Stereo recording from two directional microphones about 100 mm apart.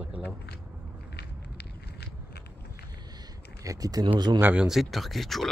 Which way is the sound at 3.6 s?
35° right (ahead or behind).